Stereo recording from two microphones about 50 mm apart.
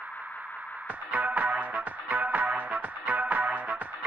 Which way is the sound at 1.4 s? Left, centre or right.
Right.